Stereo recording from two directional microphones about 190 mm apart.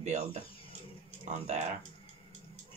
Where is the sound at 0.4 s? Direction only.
30° left (ahead or behind).